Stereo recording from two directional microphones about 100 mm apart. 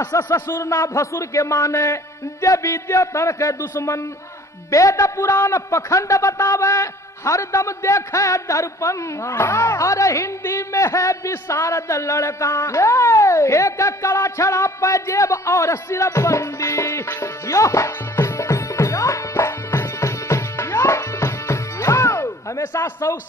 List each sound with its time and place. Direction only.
0.2 s a man's voice: 25° left (ahead or behind)